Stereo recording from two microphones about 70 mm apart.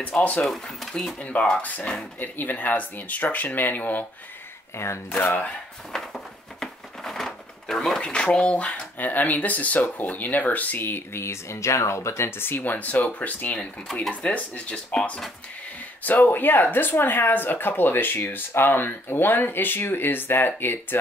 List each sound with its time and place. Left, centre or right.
0.2 s speech: left
4.7 s speech: left
5.9 s speech: centre
16.0 s speech: left